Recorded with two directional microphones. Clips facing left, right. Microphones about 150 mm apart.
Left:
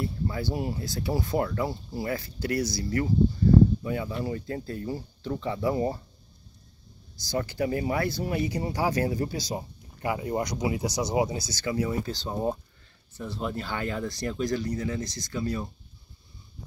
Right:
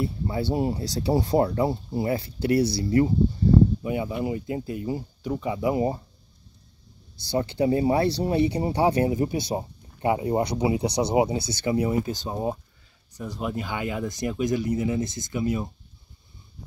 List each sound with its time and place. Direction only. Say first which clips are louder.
0.0 s speech: right 3 dB; 25° right (ahead or behind)
7.2 s speech: right 5 dB; 25° right (ahead or behind)
13.3 s speech: right 2 dB; 10° right (ahead or behind)